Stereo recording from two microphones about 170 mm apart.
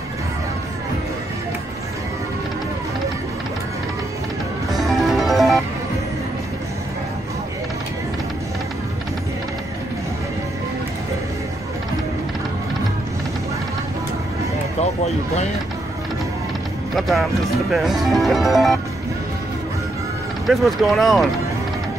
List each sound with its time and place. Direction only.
4.7 s music: centre (ahead or behind)
16.9 s music: centre (ahead or behind)
17.7 s speech: centre (ahead or behind)
20.4 s speech: centre (ahead or behind)